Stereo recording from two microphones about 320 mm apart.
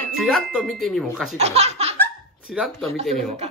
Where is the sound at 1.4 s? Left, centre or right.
Centre.